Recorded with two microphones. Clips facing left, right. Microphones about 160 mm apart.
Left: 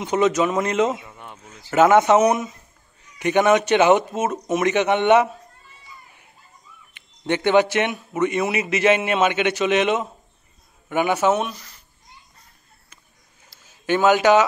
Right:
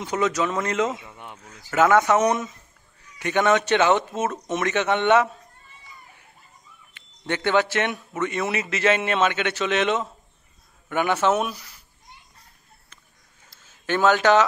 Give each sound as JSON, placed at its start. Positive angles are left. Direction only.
{"t": 0.0, "sound": "speech", "side_deg": 20}
{"t": 1.1, "sound": "a sound", "side_deg": -15}
{"t": 1.4, "sound": "speech", "side_deg": 20}
{"t": 2.2, "sound": "a man's voice", "side_deg": 10}
{"t": 6.9, "sound": "a man's voice", "side_deg": 20}
{"t": 11.3, "sound": "speech", "side_deg": -5}
{"t": 13.5, "sound": "a sound", "side_deg": 10}